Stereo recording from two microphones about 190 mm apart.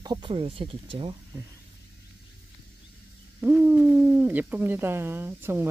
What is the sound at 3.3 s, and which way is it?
Speech, 10° right (ahead or behind).